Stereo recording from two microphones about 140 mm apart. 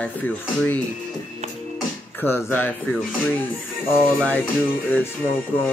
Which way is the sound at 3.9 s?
10° left (ahead or behind).